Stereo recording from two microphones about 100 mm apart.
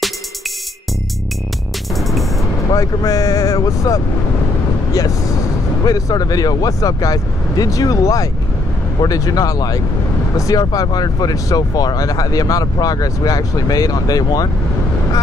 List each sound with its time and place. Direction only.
2.0 s music: centre (ahead or behind)
2.7 s speech: 35° left (ahead or behind)
5.9 s speech: 35° left (ahead or behind)